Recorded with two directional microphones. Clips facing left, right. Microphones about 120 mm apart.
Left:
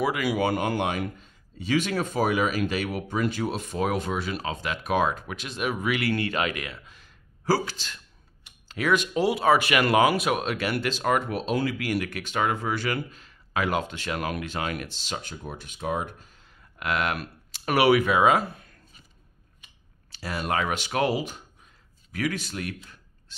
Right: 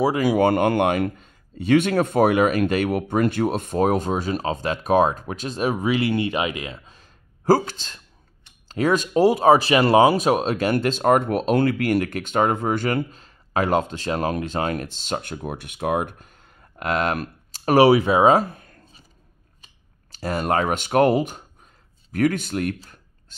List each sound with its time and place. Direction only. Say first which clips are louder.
0.2 s speech: right 7 dB; 50° right (ahead or behind); by 7.1 s 35° right (ahead or behind)
7.4 s speech: right 7 dB; 50° right (ahead or behind)